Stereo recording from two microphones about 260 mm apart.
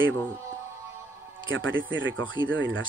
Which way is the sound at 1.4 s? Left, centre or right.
Right.